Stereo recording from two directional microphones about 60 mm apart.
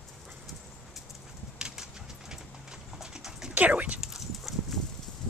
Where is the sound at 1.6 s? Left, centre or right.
Centre.